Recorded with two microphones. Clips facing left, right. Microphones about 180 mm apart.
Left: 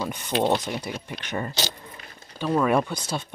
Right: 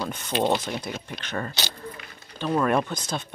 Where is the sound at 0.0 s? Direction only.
5° left (ahead or behind).